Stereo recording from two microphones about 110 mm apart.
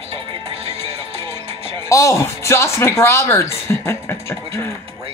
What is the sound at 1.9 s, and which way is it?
Speech, 30° left (ahead or behind).